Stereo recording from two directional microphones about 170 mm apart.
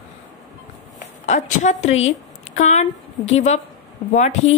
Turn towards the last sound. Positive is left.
turn(degrees=45)  # may be behind; listen again after turning